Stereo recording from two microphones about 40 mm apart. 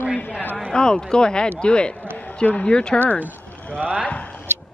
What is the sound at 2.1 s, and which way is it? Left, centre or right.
Speech, left.